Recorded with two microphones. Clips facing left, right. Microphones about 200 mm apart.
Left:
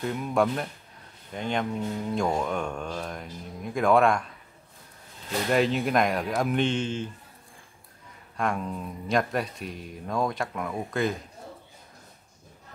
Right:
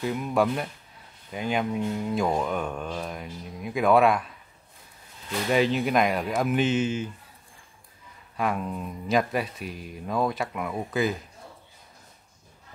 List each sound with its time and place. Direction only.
0.0 s speech: 5° right (ahead or behind)
5.5 s speech: centre (ahead or behind)
8.4 s speech: 5° right (ahead or behind)